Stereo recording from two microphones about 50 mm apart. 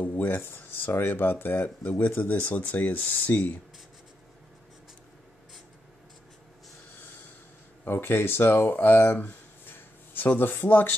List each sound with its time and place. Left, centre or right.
0.2 s speech: left
7.8 s speech: left